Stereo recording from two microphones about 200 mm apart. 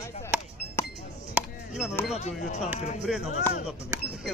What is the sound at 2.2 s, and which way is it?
Speech, 35° left (ahead or behind).